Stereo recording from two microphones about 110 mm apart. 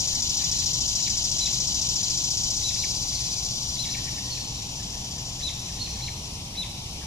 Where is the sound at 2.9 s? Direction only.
25° left (ahead or behind).